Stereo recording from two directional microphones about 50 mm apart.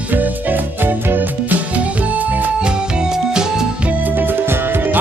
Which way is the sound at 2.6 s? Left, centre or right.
Centre.